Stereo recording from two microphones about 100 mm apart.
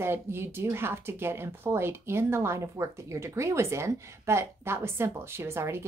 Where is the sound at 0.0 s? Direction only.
25° right (ahead or behind).